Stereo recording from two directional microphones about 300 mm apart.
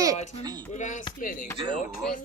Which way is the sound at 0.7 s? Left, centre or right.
Left.